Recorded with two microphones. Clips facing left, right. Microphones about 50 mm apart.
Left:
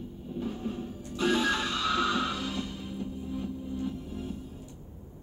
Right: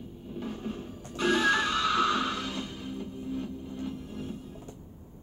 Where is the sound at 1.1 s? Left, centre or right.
Centre.